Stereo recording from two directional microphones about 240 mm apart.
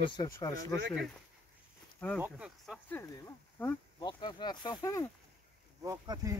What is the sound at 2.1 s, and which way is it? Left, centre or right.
Speech, centre.